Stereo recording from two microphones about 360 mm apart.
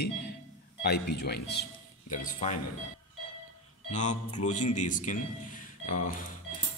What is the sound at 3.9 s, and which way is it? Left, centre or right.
Speech, centre.